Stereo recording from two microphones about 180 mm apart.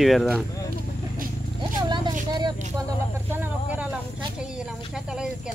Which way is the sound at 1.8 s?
25° right (ahead or behind).